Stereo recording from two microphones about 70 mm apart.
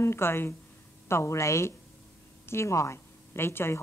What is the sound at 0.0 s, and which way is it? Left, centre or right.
A woman's voice, left.